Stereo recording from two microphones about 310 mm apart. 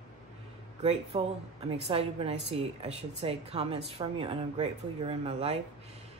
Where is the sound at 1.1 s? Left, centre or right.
Right.